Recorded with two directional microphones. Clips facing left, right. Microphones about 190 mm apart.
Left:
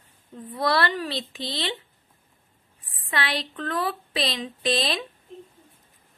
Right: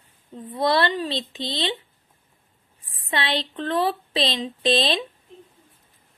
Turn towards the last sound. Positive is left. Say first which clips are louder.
# right 4 dB
turn(degrees=-25)  # may be behind; listen again after turning